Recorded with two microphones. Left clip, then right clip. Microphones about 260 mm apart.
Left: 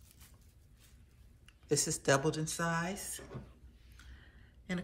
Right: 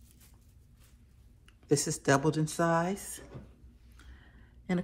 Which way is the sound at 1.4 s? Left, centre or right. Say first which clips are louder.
Right 4 dB; right.